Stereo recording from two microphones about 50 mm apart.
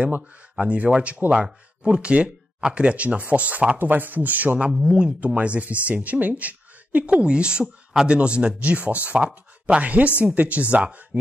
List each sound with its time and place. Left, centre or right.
0.6 s speech: right
4.7 s speech: centre; by 7.2 s right
7.2 s speech: centre